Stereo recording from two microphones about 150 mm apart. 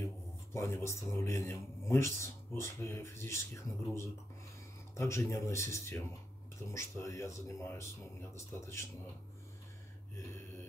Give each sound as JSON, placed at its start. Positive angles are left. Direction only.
{"t": 0.0, "sound": "a man's voice", "side_deg": 20}